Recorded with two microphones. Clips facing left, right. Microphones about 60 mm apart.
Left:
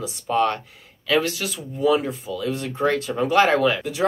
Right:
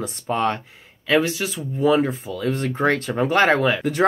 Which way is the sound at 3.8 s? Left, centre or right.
Right.